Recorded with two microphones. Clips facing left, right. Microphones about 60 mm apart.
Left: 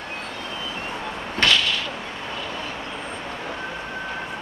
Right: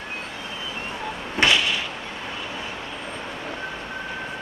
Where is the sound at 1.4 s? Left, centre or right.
Centre.